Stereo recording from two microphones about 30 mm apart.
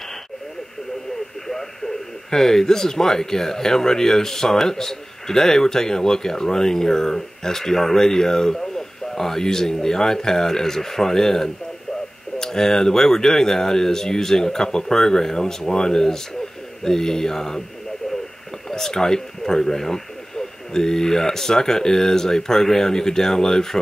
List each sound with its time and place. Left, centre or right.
1.5 s speech: centre
18.7 s speech: centre